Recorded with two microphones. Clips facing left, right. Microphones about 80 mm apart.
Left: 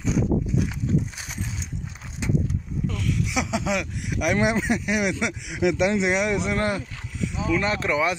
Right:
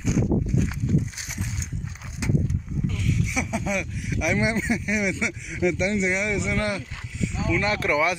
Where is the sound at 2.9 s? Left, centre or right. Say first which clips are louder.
Left 2 dB; left.